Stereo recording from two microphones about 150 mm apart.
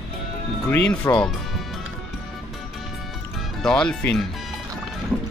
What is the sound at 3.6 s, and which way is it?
Speech, 5° left (ahead or behind).